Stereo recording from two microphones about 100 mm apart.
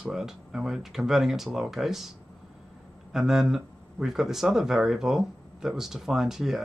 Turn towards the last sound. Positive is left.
turn(degrees=0)  # may be behind; listen again after turning